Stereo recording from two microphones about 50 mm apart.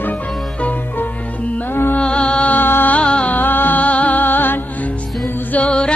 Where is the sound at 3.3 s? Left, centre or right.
Left.